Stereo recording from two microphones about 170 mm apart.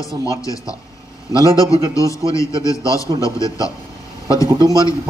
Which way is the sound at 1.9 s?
20° left (ahead or behind).